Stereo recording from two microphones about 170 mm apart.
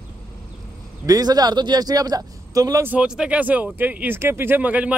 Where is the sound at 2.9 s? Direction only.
5° right (ahead or behind).